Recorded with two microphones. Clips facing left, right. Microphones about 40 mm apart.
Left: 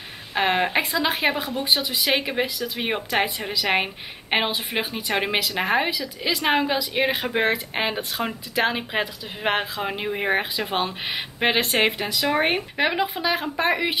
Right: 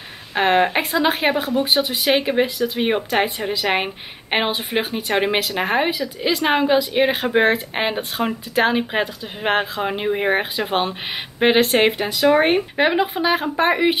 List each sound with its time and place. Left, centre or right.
0.3 s speech: centre
5.1 s speech: centre
5.9 s a woman's voice: right
6.4 s speech: centre